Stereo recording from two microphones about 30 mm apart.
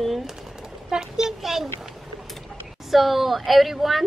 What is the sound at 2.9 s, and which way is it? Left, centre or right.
Speech, centre.